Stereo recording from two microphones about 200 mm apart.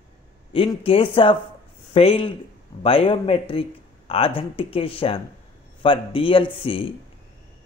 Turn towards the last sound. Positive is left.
turn(degrees=25)  # may be behind; listen again after turning